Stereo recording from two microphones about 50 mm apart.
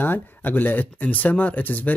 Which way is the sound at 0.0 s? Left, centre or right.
Left.